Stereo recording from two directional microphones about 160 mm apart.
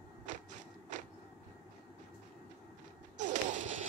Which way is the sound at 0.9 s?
50° right (ahead or behind).